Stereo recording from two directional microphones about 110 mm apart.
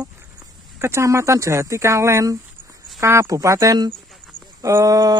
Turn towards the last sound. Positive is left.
turn(degrees=-35)  # may be behind; listen again after turning